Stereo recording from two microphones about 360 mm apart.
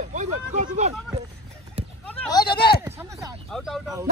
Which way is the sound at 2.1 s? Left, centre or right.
Centre.